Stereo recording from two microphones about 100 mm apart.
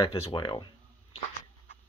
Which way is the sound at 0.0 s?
70° left (ahead or behind).